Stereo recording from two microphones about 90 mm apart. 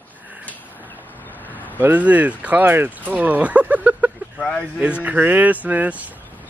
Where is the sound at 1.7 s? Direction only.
20° right (ahead or behind).